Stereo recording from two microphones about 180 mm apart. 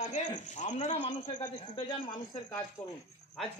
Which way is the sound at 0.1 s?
40° left (ahead or behind).